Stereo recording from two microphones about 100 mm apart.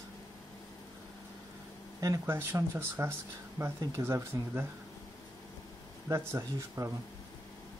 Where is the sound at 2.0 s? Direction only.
40° right (ahead or behind).